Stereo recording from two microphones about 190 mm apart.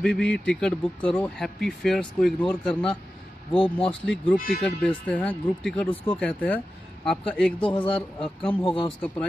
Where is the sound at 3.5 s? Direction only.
30° left (ahead or behind).